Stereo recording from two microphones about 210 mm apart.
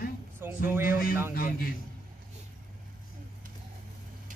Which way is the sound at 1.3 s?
45° left (ahead or behind).